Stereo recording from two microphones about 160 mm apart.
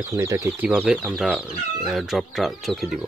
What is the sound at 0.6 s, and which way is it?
Speech, 5° right (ahead or behind).